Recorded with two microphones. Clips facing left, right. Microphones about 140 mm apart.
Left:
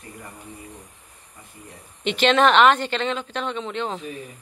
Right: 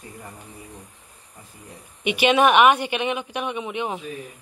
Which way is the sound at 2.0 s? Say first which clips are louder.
Even; 10° right (ahead or behind).